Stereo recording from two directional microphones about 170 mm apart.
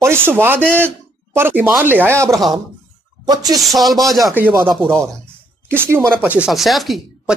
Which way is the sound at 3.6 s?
Centre (ahead or behind).